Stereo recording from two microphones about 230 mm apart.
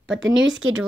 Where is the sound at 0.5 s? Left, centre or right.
Right.